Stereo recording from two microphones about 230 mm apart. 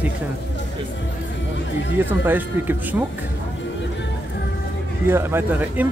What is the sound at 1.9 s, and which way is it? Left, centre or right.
Speech, centre.